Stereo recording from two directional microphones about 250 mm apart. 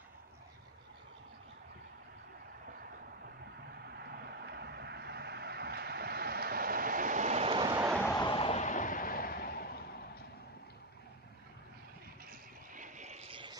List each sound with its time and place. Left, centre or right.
3.8 s vehicle: right; by 7.8 s centre
8.0 s a sound: centre; by 10.2 s left
12.3 s vehicle: right